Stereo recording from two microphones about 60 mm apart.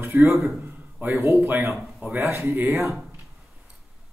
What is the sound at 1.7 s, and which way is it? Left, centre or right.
Speech, centre.